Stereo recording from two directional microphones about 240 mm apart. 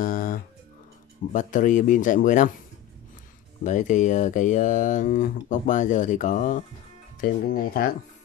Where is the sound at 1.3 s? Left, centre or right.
Left.